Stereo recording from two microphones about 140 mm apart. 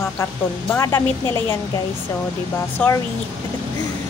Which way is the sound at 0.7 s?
20° left (ahead or behind).